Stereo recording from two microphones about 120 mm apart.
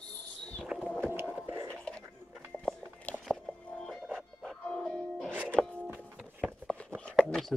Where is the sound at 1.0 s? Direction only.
20° right (ahead or behind).